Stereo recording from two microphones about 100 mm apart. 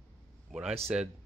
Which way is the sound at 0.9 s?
10° right (ahead or behind).